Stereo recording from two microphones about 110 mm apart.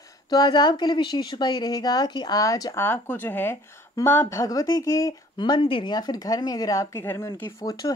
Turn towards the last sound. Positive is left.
turn(degrees=35)  # may be behind; listen again after turning